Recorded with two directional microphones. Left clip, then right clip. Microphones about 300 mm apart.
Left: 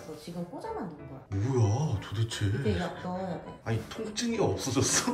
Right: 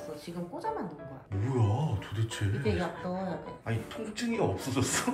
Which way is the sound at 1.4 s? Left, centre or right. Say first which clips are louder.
Left 2 dB; centre.